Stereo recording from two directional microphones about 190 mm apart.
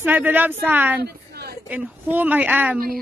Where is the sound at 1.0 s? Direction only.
55° right (ahead or behind).